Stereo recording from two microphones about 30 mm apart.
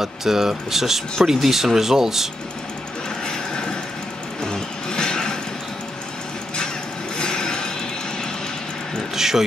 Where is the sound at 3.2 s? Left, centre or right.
Left.